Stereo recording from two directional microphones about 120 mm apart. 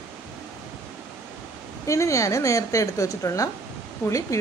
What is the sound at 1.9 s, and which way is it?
A woman's voice, 25° left (ahead or behind).